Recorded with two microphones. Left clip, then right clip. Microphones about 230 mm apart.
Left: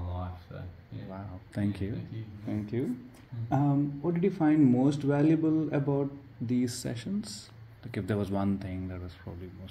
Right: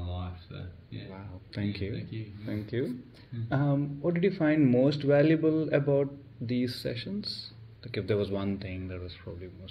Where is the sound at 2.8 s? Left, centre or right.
Left.